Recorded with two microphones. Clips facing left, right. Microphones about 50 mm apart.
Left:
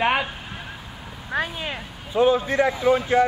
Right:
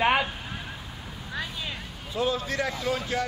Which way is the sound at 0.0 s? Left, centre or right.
Centre.